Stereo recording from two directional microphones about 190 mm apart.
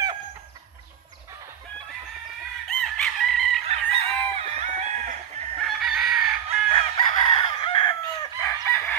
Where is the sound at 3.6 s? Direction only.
30° right (ahead or behind).